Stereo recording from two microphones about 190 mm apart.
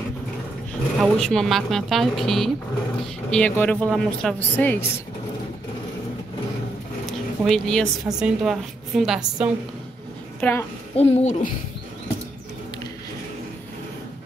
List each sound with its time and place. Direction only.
0.9 s a woman's voice: centre (ahead or behind)
7.4 s a woman's voice: 5° left (ahead or behind)
11.0 s speech: 35° left (ahead or behind)